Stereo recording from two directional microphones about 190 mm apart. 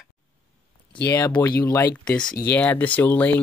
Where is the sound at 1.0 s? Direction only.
15° left (ahead or behind).